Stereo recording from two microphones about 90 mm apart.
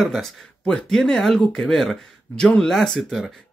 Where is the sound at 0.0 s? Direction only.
5° left (ahead or behind).